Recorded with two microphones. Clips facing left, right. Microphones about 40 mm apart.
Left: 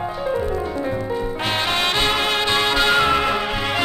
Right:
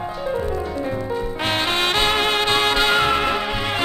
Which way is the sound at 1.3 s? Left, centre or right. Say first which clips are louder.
Right 1 dB; right.